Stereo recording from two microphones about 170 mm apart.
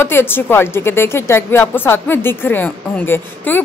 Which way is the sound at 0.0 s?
15° left (ahead or behind).